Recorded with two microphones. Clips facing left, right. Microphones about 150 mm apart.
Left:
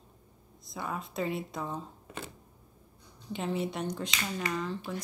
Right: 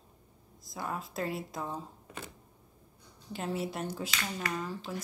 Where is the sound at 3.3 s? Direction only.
Centre (ahead or behind).